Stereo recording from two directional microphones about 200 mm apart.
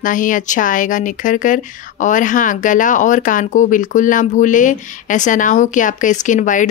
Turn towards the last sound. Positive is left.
turn(degrees=40)  # may be behind; listen again after turning